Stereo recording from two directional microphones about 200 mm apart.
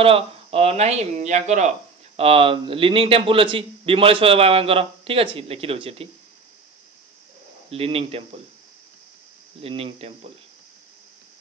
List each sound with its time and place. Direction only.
0.0 s a man's voice: 30° right (ahead or behind)
7.7 s a man's voice: 30° right (ahead or behind)
9.6 s a man's voice: 30° right (ahead or behind)